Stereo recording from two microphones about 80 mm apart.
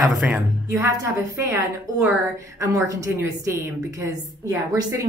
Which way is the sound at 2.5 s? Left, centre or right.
Right.